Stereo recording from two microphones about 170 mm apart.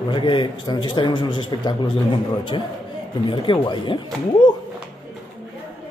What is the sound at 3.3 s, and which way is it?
Speech, 30° left (ahead or behind).